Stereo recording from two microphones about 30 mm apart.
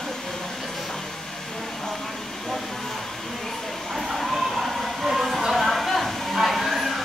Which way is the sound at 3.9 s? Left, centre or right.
Centre.